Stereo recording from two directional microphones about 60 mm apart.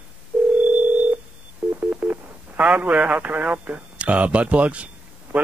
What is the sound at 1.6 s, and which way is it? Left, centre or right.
Speech, right.